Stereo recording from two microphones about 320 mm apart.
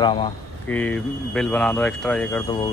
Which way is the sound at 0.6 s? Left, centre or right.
Centre.